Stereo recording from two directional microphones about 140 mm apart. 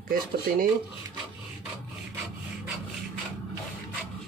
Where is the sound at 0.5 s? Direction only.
75° right (ahead or behind).